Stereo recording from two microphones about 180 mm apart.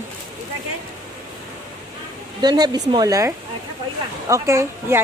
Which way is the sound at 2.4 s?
25° right (ahead or behind).